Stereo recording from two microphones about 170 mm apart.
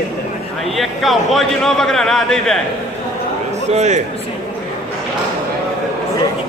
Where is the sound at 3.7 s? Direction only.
45° right (ahead or behind).